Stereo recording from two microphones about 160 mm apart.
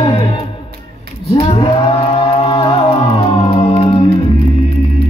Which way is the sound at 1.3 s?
40° left (ahead or behind).